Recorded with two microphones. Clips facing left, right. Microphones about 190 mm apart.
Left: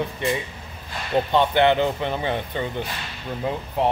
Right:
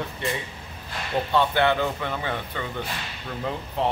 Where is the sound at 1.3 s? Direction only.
20° left (ahead or behind).